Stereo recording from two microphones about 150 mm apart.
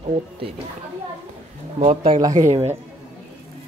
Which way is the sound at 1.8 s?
35° right (ahead or behind).